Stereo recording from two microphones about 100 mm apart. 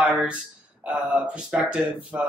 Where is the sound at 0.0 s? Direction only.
10° right (ahead or behind).